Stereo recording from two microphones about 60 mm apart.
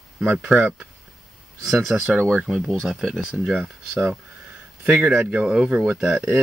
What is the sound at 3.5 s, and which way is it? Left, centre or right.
Speech, centre.